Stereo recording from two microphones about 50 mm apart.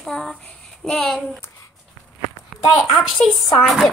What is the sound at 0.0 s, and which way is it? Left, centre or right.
A child's voice, centre.